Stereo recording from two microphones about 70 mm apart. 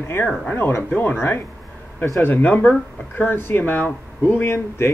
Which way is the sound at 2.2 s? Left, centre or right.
Left.